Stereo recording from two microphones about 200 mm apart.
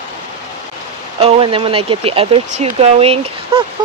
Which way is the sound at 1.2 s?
25° right (ahead or behind).